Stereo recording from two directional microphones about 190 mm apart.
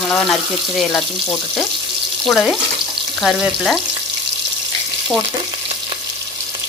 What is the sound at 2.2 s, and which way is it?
Speech, centre (ahead or behind).